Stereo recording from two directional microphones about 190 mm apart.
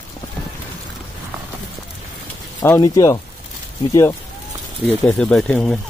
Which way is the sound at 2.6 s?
15° left (ahead or behind).